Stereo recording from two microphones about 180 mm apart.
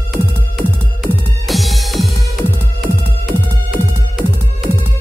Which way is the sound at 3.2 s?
Centre (ahead or behind).